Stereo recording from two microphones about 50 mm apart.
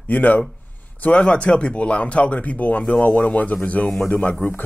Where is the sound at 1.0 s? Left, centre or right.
Left.